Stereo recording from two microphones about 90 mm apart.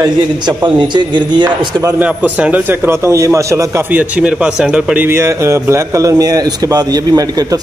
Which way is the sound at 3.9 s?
15° right (ahead or behind).